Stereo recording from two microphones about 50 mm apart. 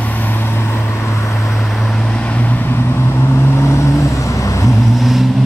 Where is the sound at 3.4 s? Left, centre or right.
Left.